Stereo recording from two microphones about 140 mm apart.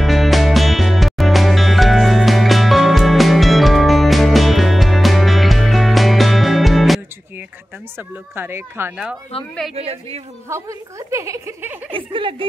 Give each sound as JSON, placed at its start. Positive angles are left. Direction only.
{"t": 0.0, "sound": "music", "side_deg": 0}
{"t": 8.4, "sound": "speech", "side_deg": -15}
{"t": 9.3, "sound": "speech", "side_deg": 45}
{"t": 10.5, "sound": "a woman's voice", "side_deg": -20}
{"t": 11.9, "sound": "speech", "side_deg": -40}